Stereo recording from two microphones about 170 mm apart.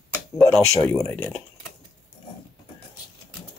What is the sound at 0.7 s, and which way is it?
Speech, 20° left (ahead or behind).